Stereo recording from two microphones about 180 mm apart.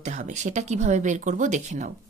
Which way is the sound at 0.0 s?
40° right (ahead or behind).